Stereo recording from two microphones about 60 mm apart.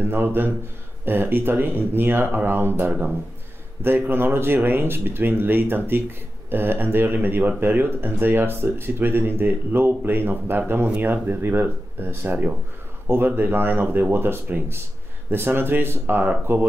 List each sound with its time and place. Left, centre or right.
0.0 s speech: right
3.8 s speech: right